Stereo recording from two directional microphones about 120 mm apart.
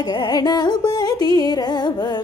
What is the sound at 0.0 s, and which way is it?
Music, 35° left (ahead or behind).